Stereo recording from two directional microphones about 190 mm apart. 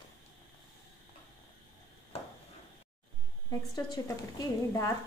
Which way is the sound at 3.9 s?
20° left (ahead or behind).